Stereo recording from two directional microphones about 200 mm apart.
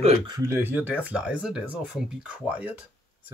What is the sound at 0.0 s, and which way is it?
Speech, 30° right (ahead or behind).